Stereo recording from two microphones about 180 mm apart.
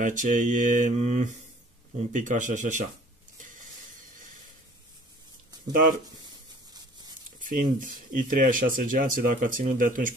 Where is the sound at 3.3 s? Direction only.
45° right (ahead or behind).